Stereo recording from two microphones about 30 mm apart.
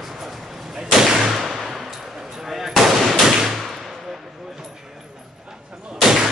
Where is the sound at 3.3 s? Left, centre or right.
Centre.